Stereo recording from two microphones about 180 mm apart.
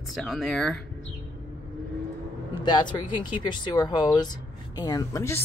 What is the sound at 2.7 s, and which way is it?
Speech, 25° left (ahead or behind).